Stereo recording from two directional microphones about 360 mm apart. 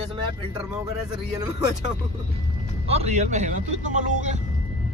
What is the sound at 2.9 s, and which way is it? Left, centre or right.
Speech, centre.